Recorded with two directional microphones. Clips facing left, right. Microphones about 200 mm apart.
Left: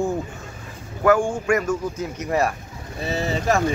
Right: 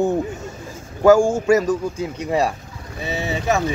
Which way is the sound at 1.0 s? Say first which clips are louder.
Right 5 dB; 25° right (ahead or behind).